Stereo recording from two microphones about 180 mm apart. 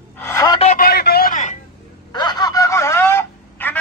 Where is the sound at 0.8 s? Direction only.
60° left (ahead or behind); by 1.6 s 45° left (ahead or behind).